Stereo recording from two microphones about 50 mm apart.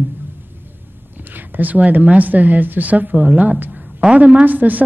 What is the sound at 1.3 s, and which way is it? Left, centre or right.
A woman's voice, right.